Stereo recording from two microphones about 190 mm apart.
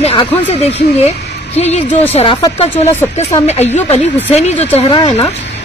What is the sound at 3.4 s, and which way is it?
Speech, 35° left (ahead or behind).